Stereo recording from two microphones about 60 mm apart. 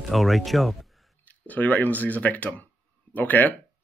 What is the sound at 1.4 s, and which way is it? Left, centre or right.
Speech, left.